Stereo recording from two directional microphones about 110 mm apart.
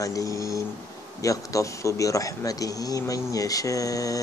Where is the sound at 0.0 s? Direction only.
30° left (ahead or behind).